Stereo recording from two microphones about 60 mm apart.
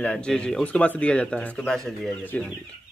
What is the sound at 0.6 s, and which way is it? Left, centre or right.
Speech, left.